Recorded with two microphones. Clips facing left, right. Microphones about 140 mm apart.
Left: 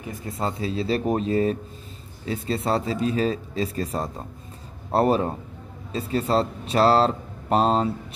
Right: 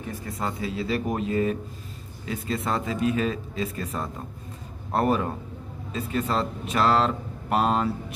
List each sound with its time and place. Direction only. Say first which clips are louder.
0.3 s speech: left 3 dB; 30° left (ahead or behind)